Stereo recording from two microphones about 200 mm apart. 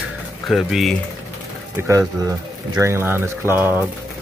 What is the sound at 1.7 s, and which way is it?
Speech, 15° right (ahead or behind).